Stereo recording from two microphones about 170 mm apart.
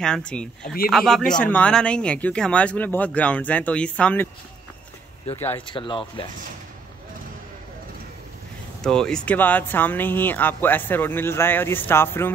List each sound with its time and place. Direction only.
0.0 s speech: 5° left (ahead or behind)
5.7 s speech: 30° left (ahead or behind)
8.8 s speech: 5° left (ahead or behind)